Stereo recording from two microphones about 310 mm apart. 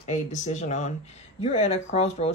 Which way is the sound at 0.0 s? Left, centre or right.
Left.